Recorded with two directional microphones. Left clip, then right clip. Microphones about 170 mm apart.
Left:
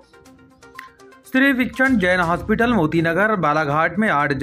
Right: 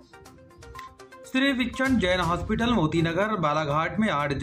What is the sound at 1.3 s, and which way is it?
Speech, 35° left (ahead or behind).